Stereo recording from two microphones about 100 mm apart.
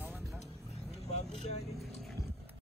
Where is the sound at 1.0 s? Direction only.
90° left.